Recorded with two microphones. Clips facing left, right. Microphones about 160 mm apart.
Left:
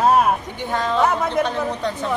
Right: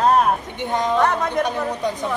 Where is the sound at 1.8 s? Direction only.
10° right (ahead or behind).